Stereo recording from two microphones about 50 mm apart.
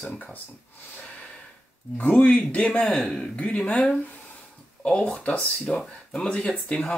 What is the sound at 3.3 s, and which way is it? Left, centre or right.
Speech, left.